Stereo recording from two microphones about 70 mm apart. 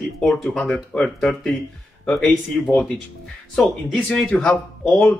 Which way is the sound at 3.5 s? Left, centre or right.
Centre.